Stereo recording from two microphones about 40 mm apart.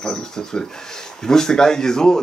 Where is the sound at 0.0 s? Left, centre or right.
Centre.